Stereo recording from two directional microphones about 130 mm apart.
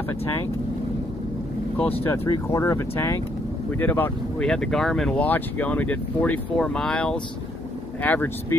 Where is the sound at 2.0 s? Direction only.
20° left (ahead or behind).